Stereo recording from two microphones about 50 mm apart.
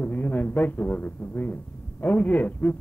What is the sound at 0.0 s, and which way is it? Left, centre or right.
Speech, left.